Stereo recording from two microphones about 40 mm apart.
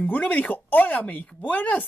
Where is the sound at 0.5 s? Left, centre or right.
Left.